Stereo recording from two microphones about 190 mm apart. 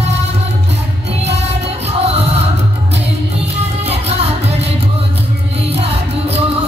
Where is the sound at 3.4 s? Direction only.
35° right (ahead or behind).